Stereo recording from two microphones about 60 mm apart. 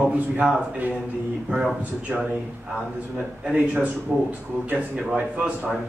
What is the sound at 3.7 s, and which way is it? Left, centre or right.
Speech, right.